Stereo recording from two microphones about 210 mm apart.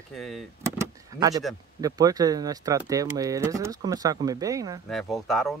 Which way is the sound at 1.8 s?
15° right (ahead or behind).